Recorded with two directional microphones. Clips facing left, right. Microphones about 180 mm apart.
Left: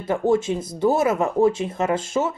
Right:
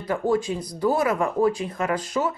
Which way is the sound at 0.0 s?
25° left (ahead or behind).